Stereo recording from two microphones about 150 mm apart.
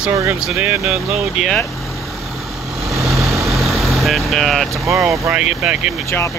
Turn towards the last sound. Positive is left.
turn(degrees=-5)  # may be behind; listen again after turning